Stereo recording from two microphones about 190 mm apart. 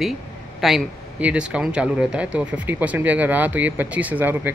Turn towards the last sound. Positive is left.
turn(degrees=-10)  # may be behind; listen again after turning